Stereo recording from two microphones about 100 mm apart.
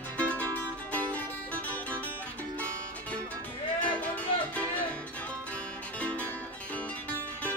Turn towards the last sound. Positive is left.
turn(degrees=15)  # may be behind; listen again after turning